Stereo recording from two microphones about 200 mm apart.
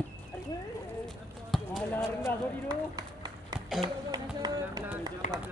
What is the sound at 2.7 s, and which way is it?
Run, 20° right (ahead or behind).